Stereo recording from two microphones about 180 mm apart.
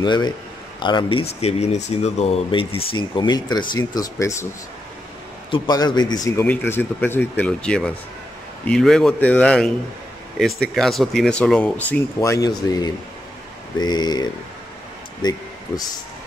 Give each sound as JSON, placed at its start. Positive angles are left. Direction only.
{"t": 0.0, "sound": "speech", "side_deg": 25}
{"t": 1.4, "sound": "speech", "side_deg": 35}
{"t": 5.5, "sound": "speech", "side_deg": 25}
{"t": 12.2, "sound": "speech", "side_deg": 20}
{"t": 15.2, "sound": "speech", "side_deg": 20}